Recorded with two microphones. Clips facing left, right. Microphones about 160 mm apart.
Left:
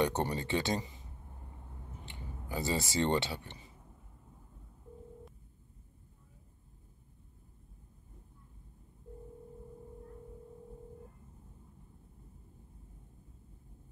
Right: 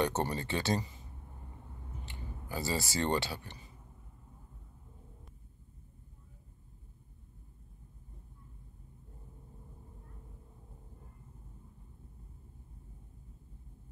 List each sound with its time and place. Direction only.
0.0 s speech: 15° left (ahead or behind)
2.0 s speech: 20° left (ahead or behind)